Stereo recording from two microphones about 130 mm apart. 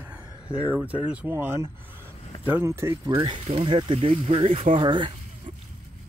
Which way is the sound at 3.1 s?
40° right (ahead or behind).